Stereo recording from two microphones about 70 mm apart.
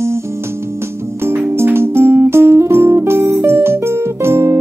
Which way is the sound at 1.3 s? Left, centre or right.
Right.